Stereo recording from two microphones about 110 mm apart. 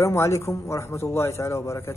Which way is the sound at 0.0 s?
25° left (ahead or behind).